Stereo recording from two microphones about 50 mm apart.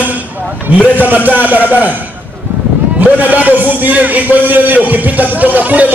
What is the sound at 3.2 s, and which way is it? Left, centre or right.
Speech, right.